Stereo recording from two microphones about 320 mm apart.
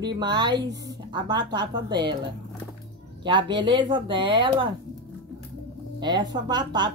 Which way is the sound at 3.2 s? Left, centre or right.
Centre.